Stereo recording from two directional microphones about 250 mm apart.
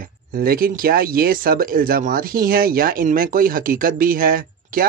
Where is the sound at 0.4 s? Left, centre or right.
Right.